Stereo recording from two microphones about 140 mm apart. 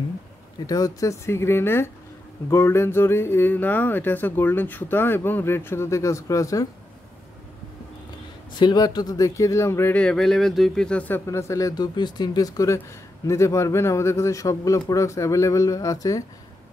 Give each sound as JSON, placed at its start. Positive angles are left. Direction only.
{"t": 0.7, "sound": "speech", "side_deg": 25}
{"t": 8.5, "sound": "speech", "side_deg": 30}